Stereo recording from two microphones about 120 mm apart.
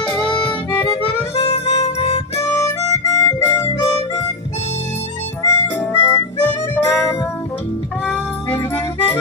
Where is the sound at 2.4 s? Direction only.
25° left (ahead or behind).